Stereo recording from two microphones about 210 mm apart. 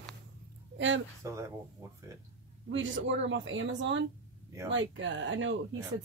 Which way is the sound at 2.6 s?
65° right (ahead or behind).